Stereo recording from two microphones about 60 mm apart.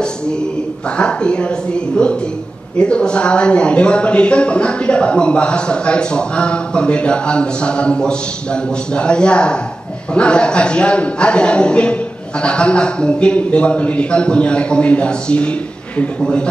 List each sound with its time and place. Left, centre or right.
0.9 s speech: centre